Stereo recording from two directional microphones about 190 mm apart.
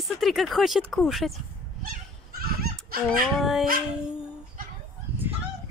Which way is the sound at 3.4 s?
Centre (ahead or behind).